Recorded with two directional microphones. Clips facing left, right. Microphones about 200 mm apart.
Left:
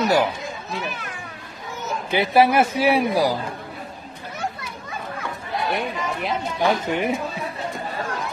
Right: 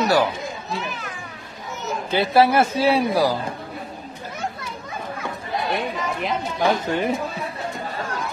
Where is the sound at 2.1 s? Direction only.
15° left (ahead or behind).